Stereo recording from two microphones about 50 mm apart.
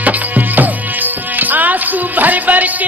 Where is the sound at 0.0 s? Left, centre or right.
Right.